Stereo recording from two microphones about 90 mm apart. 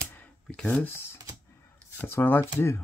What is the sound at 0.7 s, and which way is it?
Speech, 25° left (ahead or behind).